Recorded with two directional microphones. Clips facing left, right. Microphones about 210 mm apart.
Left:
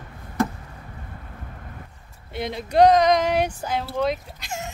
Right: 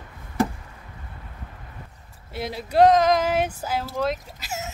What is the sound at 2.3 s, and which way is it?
Speech, 5° right (ahead or behind).